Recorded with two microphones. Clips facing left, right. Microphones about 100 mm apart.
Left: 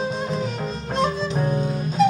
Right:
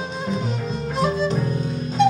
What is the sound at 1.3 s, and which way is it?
Music, 40° left (ahead or behind).